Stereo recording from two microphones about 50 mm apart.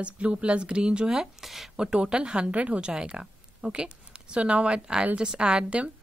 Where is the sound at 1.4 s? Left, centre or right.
Centre.